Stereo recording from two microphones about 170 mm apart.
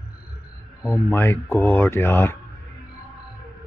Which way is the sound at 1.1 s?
15° left (ahead or behind).